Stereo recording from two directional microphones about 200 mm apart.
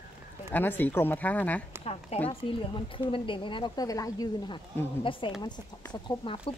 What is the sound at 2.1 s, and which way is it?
Speech, 30° left (ahead or behind).